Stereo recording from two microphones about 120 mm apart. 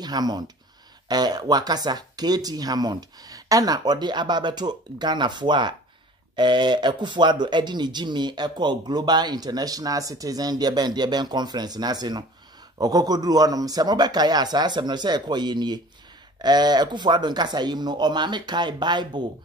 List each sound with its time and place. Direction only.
0.0 s speech: 35° right (ahead or behind)